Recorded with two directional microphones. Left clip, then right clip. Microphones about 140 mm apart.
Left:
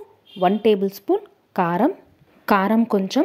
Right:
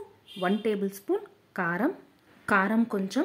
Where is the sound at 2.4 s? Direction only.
50° left (ahead or behind).